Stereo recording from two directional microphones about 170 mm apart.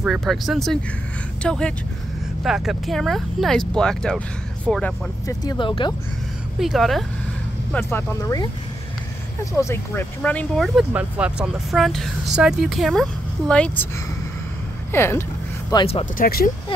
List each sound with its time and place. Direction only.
0.0 s speech: centre (ahead or behind)
5.4 s speech: 25° left (ahead or behind)
6.6 s speech: centre (ahead or behind)
7.7 s speech: 15° left (ahead or behind)
10.9 s speech: 10° right (ahead or behind)
14.9 s speech: 15° left (ahead or behind)
15.7 s speech: 30° left (ahead or behind)
16.2 s speech: 60° left (ahead or behind)